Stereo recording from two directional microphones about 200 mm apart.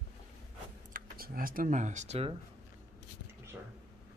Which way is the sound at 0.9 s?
45° right (ahead or behind).